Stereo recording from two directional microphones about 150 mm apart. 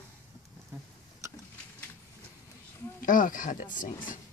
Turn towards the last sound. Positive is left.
turn(degrees=60)  # may be behind; listen again after turning